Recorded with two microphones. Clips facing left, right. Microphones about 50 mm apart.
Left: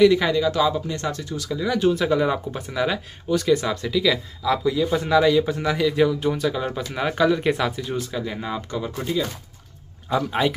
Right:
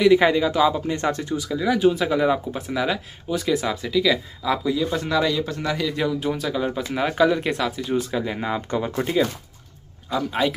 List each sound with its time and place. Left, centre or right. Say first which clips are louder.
0.2 s speech: right 2 dB; centre
0.8 s speech: right 4 dB; right
1.3 s speech: right 2 dB; centre
7.9 s speech: right 3 dB; centre
8.6 s speech: right 3 dB; right
10.0 s speech: left 1 dB; centre